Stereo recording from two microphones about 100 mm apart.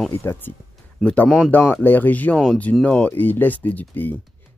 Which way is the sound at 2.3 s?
5° left (ahead or behind).